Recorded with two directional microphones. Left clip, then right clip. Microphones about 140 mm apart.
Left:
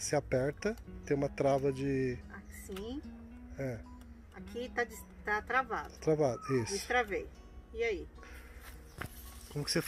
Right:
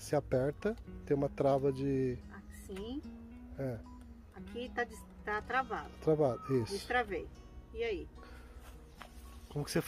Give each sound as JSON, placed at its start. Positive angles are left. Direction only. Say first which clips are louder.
{"t": 0.0, "sound": "speech", "louder": "left 1 dB", "side_deg": -15}
{"t": 2.7, "sound": "speech", "louder": "left 1 dB", "side_deg": -30}
{"t": 3.5, "sound": "speech", "louder": "left 1 dB", "side_deg": -15}
{"t": 9.5, "sound": "speech", "louder": "left 1 dB", "side_deg": -15}